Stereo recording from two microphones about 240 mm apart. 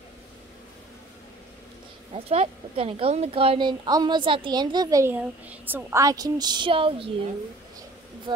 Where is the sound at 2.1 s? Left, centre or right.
Right.